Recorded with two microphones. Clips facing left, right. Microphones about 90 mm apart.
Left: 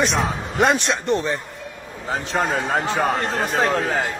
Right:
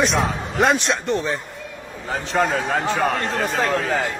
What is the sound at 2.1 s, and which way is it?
Speech, 20° left (ahead or behind).